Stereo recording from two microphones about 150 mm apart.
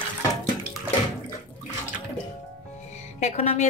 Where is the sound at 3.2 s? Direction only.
50° left (ahead or behind).